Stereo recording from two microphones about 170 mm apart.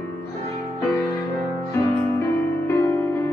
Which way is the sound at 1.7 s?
15° left (ahead or behind).